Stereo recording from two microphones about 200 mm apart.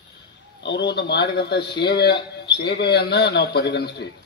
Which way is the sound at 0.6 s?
55° left (ahead or behind).